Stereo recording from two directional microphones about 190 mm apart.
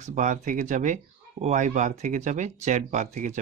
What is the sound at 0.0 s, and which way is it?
Speech, 40° right (ahead or behind).